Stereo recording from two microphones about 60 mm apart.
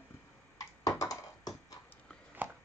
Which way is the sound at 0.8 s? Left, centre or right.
Left.